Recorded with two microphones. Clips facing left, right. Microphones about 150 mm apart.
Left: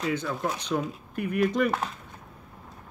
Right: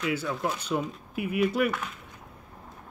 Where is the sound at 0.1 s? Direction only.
5° right (ahead or behind).